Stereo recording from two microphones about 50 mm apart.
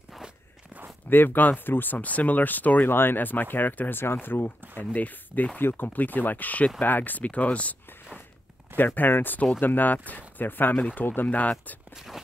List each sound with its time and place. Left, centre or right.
1.1 s speech: left
2.9 s speech: left
4.0 s speech: left
5.6 s speech: left
8.7 s speech: left